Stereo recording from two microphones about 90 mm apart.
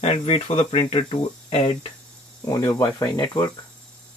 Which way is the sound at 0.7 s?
90° left.